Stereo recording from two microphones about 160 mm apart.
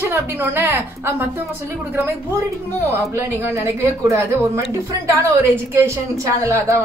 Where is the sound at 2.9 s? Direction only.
15° right (ahead or behind).